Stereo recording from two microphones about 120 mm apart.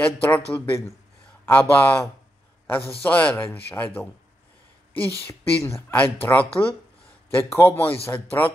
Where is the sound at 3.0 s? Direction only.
15° left (ahead or behind).